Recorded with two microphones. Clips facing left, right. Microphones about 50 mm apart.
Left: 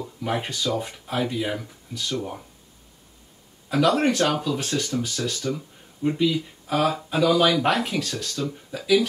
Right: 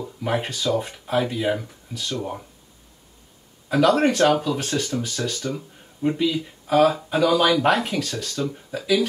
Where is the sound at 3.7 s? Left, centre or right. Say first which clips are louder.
Right 2 dB; centre.